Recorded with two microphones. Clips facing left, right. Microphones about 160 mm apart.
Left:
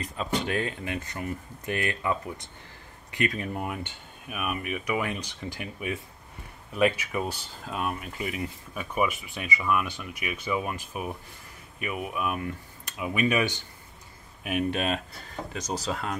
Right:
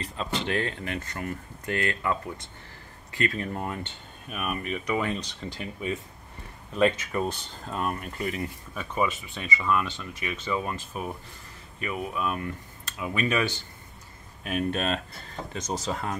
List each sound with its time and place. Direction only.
0.2 s speech: 10° left (ahead or behind)